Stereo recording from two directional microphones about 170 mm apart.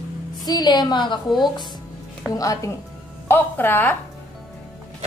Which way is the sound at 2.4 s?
20° left (ahead or behind).